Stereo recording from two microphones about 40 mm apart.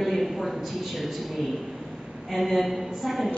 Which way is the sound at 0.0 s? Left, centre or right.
Centre.